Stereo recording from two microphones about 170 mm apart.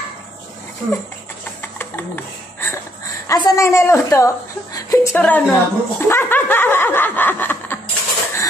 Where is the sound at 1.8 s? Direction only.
10° left (ahead or behind).